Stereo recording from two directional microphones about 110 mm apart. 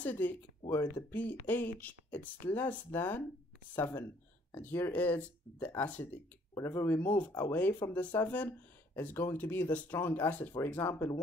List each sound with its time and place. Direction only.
0.0 s speech: 15° left (ahead or behind)
6.5 s speech: 25° left (ahead or behind)